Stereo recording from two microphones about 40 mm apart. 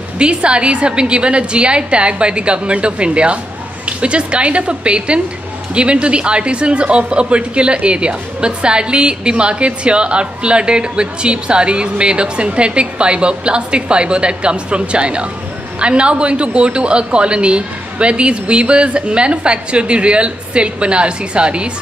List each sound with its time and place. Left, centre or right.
0.2 s speech: right